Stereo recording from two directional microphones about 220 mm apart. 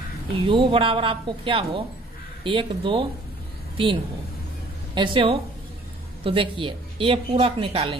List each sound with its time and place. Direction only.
0.5 s a woman's voice: 25° right (ahead or behind)